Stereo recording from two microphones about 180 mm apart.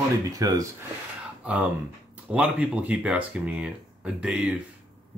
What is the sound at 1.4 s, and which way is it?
Speech, 5° right (ahead or behind).